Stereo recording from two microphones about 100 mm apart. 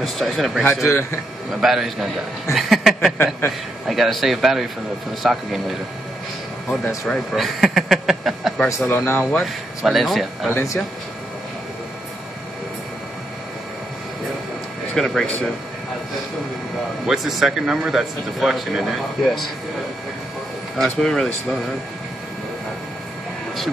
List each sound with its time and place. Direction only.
0.0 s speech: centre (ahead or behind)
0.8 s a man's voice: 25° left (ahead or behind)
1.5 s speech: centre (ahead or behind)
7.1 s speech: centre (ahead or behind)
8.6 s a man's voice: 25° left (ahead or behind)
9.4 s speech: centre (ahead or behind)
10.5 s a man's voice: 30° left (ahead or behind)
15.0 s speech: 5° left (ahead or behind)
17.0 s speech: 5° right (ahead or behind)
20.7 s speech: centre (ahead or behind)